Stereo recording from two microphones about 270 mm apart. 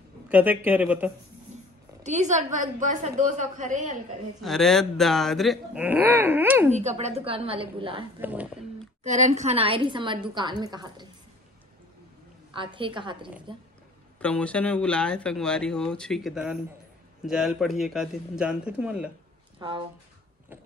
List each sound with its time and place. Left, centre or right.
0.3 s speech: centre
2.0 s a woman's voice: right
4.4 s speech: centre
6.7 s a woman's voice: right
8.2 s speech: centre
9.0 s a woman's voice: right
12.5 s a woman's voice: centre
14.2 s speech: centre
19.6 s a woman's voice: centre